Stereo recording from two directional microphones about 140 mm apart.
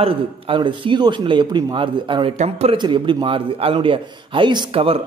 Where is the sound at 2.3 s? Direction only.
50° right (ahead or behind).